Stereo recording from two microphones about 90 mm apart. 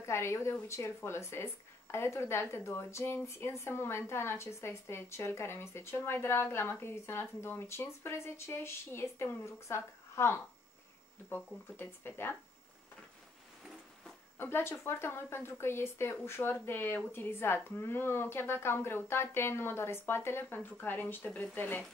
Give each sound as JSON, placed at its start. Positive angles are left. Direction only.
{"t": 0.0, "sound": "speech", "side_deg": 30}
{"t": 14.4, "sound": "speech", "side_deg": 25}